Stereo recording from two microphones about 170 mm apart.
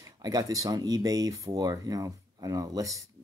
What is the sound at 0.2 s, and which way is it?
Speech, 20° right (ahead or behind).